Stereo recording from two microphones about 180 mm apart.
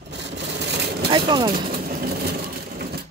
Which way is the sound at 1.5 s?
55° right (ahead or behind).